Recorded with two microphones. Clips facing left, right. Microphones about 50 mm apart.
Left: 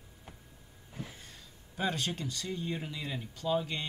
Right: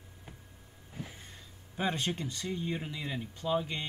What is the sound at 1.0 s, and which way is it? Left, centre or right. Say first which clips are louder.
Speech: even; centre.